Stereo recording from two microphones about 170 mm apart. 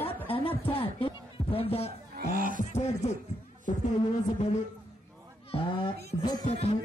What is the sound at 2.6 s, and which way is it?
Beatboxing, 40° left (ahead or behind).